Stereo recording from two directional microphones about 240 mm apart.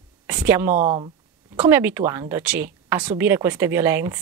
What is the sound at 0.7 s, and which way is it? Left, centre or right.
Speech, right.